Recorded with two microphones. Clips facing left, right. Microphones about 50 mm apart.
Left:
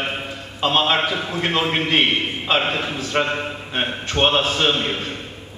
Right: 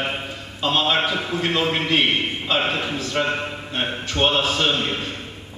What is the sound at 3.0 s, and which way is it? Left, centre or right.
A man's voice, left.